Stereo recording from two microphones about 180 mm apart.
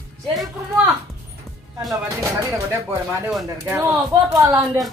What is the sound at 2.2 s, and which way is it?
Speech, 15° right (ahead or behind).